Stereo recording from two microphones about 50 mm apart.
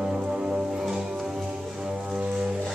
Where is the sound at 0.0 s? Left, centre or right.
Centre.